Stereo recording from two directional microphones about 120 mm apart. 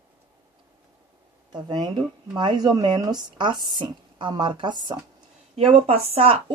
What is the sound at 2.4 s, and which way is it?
Speech, 35° right (ahead or behind).